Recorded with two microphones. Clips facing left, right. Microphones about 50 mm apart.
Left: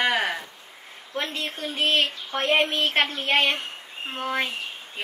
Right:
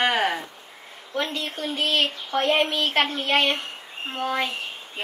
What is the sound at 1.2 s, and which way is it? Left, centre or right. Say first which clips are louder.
Speech: right 2 dB; left.